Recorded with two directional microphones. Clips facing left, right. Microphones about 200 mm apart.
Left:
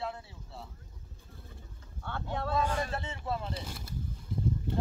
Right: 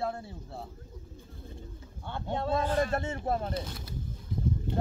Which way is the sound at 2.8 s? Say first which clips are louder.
Right 6 dB; 45° right (ahead or behind).